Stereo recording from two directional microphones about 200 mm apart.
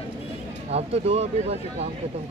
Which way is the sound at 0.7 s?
30° right (ahead or behind).